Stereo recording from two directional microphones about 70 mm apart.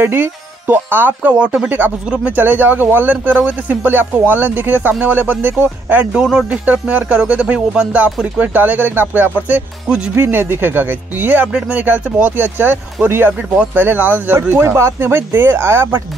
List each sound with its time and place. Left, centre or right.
0.0 s speech: right
9.8 s speech: centre
10.1 s speech: right